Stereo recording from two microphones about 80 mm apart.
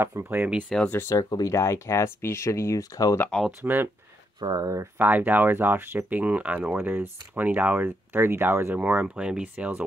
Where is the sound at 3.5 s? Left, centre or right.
Right.